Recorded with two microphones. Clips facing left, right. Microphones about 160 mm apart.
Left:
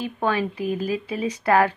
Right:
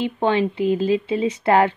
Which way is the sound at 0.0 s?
25° right (ahead or behind).